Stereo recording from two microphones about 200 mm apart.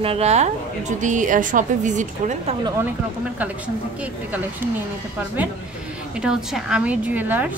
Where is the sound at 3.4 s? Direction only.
5° right (ahead or behind).